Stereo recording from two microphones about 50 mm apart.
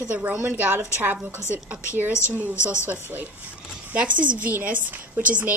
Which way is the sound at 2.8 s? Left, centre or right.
Right.